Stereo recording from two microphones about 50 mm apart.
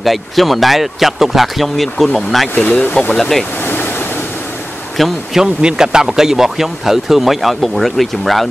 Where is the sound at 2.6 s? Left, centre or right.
Centre.